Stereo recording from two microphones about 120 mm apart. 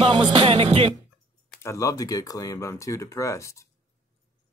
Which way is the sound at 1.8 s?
25° left (ahead or behind).